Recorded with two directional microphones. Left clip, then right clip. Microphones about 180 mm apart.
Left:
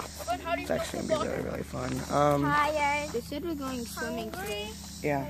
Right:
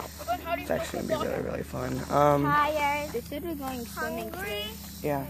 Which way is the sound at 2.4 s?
30° left (ahead or behind).